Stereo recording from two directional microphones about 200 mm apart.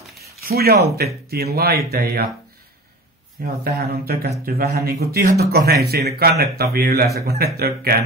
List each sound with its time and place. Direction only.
0.5 s speech: 50° right (ahead or behind)
3.6 s speech: 50° right (ahead or behind)